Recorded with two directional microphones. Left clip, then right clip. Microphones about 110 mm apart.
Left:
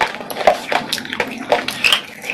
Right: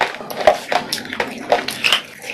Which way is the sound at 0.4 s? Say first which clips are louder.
Even; 15° left (ahead or behind).